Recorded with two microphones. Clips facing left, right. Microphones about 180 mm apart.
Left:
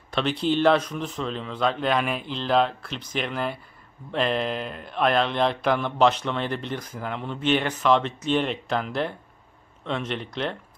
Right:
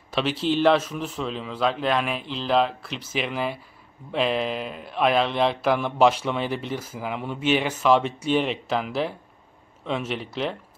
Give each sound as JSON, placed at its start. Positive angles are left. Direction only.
{"t": 0.1, "sound": "speech", "side_deg": -5}